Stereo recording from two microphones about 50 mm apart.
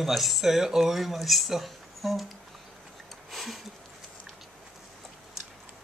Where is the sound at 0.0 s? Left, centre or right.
Centre.